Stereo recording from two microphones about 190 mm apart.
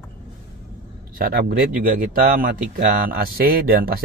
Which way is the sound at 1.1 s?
50° right (ahead or behind).